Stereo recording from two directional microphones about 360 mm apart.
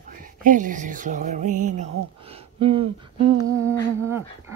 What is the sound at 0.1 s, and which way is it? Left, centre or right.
Mantra, right.